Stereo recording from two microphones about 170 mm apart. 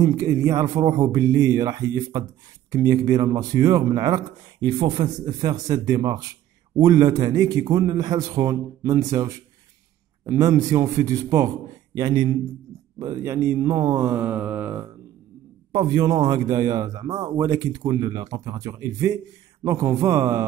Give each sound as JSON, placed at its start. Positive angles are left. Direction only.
{"t": 0.0, "sound": "a man's voice", "side_deg": -20}
{"t": 13.0, "sound": "mantra", "side_deg": -20}
{"t": 15.7, "sound": "a man's voice", "side_deg": -25}
{"t": 19.6, "sound": "mantra", "side_deg": -20}